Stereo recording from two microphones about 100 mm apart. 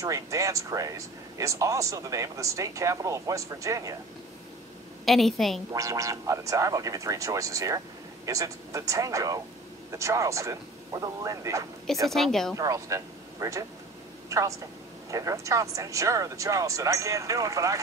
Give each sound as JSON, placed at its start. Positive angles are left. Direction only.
{"t": 0.0, "sound": "speech", "side_deg": -35}
{"t": 5.0, "sound": "a woman's voice", "side_deg": 0}
{"t": 5.7, "sound": "speech", "side_deg": -35}
{"t": 12.1, "sound": "a woman's voice", "side_deg": 5}
{"t": 12.5, "sound": "speech", "side_deg": -35}